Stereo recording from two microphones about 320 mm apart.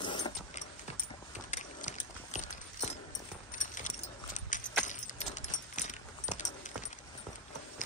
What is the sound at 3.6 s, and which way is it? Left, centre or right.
Keys jangling, left.